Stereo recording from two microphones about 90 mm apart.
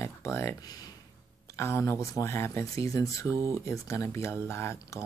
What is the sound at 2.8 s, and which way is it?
Speech, 40° left (ahead or behind).